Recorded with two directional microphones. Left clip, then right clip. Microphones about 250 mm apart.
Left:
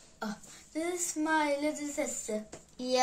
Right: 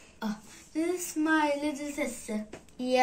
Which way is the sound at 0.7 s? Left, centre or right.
Left.